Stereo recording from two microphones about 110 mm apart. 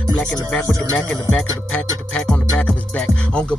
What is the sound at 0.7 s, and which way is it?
Speech, 30° right (ahead or behind).